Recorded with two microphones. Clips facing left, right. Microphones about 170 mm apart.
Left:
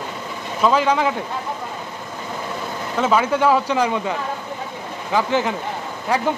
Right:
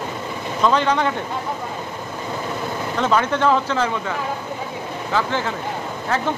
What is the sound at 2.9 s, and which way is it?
Speech, 5° left (ahead or behind).